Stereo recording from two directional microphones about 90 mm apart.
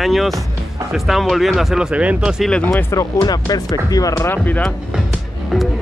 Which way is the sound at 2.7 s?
35° left (ahead or behind).